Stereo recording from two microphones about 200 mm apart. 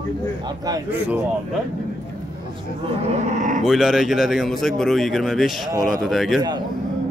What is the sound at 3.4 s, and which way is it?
Cattle, 40° right (ahead or behind).